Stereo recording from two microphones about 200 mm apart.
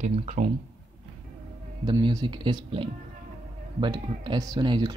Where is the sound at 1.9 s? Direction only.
20° right (ahead or behind).